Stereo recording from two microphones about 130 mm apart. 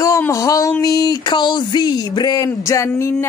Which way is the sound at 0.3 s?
25° left (ahead or behind).